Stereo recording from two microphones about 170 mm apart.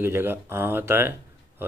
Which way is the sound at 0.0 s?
15° right (ahead or behind).